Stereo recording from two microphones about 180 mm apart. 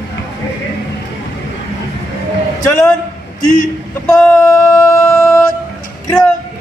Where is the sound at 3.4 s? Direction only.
45° left (ahead or behind).